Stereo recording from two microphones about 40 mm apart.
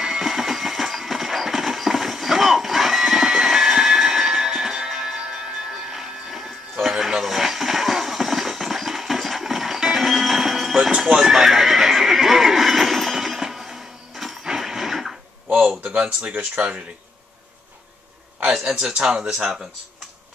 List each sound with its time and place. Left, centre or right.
0.0 s train: centre
14.6 s a sound: centre
16.5 s speech: right
18.5 s speech: centre